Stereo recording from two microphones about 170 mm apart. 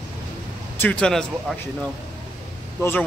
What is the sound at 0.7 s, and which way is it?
Speech, 10° left (ahead or behind).